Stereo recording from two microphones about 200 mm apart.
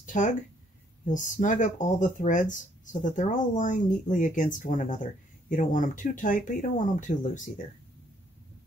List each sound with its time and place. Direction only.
0.0 s speech: 40° left (ahead or behind)